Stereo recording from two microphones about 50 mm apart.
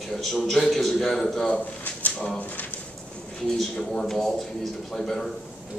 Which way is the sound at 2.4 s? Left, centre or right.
Left.